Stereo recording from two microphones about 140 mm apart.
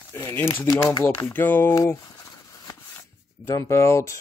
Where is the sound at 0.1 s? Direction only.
15° left (ahead or behind).